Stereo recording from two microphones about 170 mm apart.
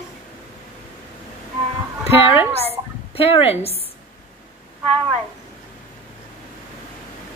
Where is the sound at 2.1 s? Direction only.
30° left (ahead or behind).